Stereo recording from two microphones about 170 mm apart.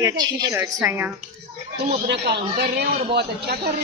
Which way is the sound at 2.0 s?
75° right (ahead or behind).